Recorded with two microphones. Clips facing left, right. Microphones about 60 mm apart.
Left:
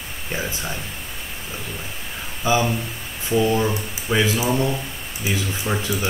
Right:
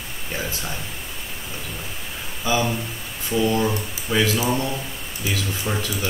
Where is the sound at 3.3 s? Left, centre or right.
Centre.